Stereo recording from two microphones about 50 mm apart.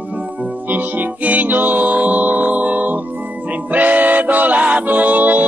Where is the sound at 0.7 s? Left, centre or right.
Right.